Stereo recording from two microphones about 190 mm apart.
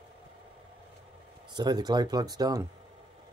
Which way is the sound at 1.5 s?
20° right (ahead or behind).